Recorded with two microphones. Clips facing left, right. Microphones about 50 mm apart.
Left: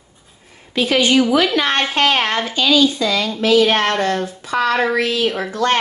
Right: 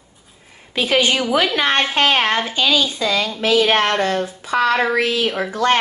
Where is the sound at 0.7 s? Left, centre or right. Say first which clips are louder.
Left 2 dB; right.